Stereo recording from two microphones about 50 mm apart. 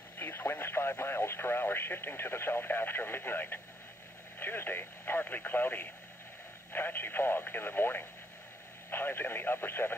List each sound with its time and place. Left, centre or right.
0.2 s speech: left